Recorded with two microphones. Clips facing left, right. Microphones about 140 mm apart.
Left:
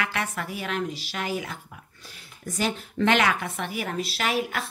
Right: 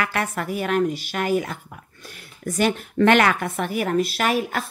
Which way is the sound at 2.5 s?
55° right (ahead or behind).